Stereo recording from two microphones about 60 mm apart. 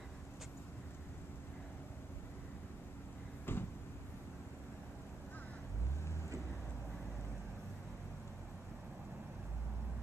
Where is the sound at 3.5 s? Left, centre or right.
Left.